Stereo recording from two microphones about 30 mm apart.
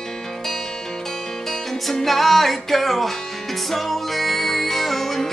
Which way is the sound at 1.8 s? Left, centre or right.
Centre.